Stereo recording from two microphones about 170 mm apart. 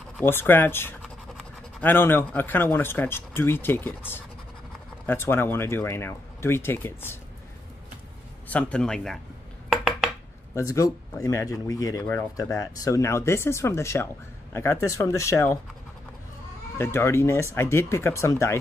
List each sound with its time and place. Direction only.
0.2 s speech: 15° left (ahead or behind)
8.5 s speech: 5° left (ahead or behind)
9.7 s dishes: centre (ahead or behind)
10.5 s speech: 20° left (ahead or behind)
16.7 s speech: 15° left (ahead or behind)